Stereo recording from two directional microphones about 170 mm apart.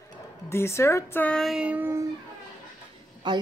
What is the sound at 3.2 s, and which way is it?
Speech, 25° right (ahead or behind).